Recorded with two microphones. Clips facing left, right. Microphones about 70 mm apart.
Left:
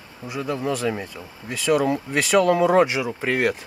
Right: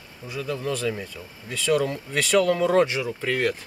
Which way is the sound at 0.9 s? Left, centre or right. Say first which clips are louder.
Left 2 dB; left.